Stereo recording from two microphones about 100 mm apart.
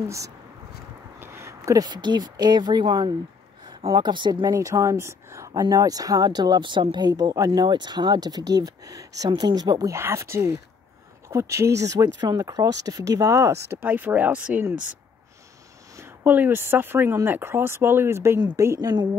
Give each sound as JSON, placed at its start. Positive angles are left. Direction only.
{"t": 1.2, "sound": "a sound", "side_deg": -25}
{"t": 1.8, "sound": "speech", "side_deg": -45}
{"t": 4.6, "sound": "speech", "side_deg": -30}
{"t": 9.9, "sound": "speech", "side_deg": -25}
{"t": 16.3, "sound": "speech", "side_deg": -20}
{"t": 18.8, "sound": "speech", "side_deg": -40}